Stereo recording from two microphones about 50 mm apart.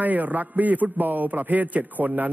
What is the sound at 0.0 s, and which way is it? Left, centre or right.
A man's voice, right.